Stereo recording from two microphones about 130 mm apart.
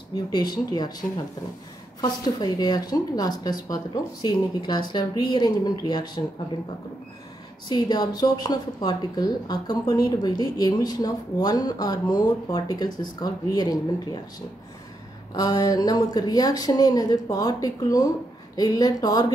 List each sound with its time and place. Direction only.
0.1 s speech: 35° left (ahead or behind)
2.0 s speech: 30° left (ahead or behind)
7.6 s speech: 30° left (ahead or behind)
15.3 s speech: 30° left (ahead or behind)